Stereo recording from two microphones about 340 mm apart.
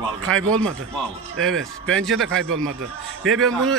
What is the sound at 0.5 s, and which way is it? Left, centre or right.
Speech, centre.